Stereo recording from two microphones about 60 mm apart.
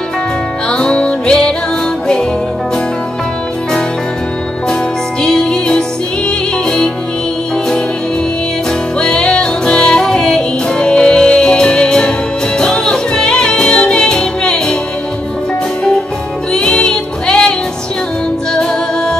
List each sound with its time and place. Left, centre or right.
0.7 s music: centre
5.2 s music: centre
9.0 s music: centre
16.5 s music: centre